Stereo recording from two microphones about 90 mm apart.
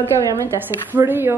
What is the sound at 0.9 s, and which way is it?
Speech, 25° right (ahead or behind).